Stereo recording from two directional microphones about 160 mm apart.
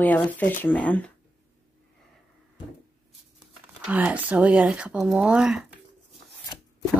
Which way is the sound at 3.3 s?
5° right (ahead or behind).